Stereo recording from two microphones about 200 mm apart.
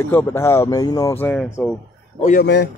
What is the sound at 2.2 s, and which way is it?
Speech, 40° left (ahead or behind).